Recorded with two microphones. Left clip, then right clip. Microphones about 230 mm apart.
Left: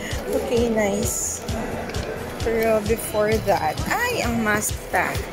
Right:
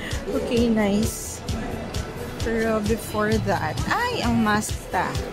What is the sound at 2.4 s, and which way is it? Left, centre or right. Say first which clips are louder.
Speech: left 4 dB; centre.